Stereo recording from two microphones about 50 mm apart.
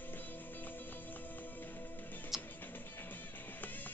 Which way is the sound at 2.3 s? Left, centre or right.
Centre.